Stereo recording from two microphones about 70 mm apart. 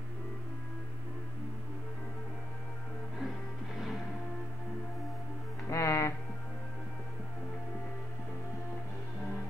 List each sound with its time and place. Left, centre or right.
3.7 s music: centre
5.7 s music: left